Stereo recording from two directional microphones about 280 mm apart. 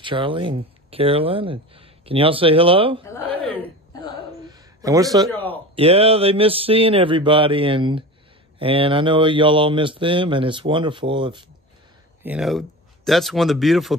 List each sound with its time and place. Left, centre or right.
0.0 s speech: centre
3.1 s chuckle: centre
4.5 s a sound: centre
5.3 s speech: centre
5.8 s speech: right
12.2 s speech: centre